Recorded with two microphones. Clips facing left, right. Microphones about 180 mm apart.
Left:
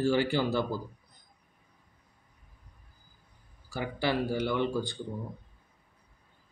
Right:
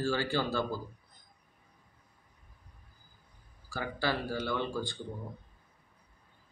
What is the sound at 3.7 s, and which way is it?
Speech, 20° left (ahead or behind).